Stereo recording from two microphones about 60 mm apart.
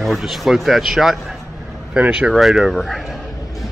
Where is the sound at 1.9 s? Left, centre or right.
Right.